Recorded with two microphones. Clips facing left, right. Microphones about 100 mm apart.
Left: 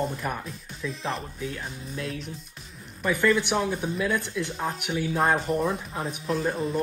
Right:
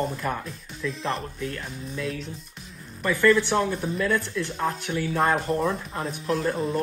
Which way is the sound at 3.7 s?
Centre (ahead or behind).